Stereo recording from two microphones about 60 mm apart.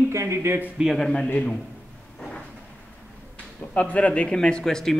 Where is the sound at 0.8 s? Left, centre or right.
Centre.